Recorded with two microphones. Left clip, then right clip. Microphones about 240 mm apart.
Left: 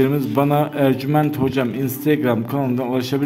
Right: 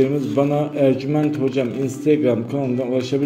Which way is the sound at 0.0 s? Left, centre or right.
Left.